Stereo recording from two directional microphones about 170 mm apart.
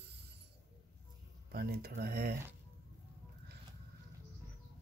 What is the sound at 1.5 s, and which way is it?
Speech, 65° right (ahead or behind).